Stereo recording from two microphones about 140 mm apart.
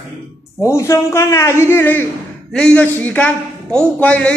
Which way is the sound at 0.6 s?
20° left (ahead or behind).